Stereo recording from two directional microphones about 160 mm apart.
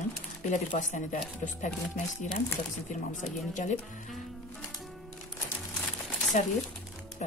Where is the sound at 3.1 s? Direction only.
50° left (ahead or behind).